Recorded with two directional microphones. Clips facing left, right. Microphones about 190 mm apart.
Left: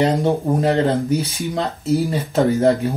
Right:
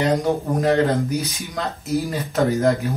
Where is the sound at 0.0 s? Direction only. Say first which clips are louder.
Left 2 dB; 30° left (ahead or behind).